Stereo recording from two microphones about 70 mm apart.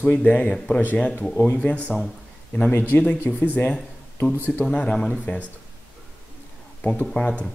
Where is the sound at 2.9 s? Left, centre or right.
Left.